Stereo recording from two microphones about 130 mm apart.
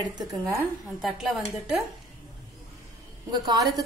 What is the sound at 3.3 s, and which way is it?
Speech, 30° right (ahead or behind).